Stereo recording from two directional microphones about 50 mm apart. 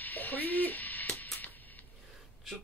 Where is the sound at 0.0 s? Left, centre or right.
Left.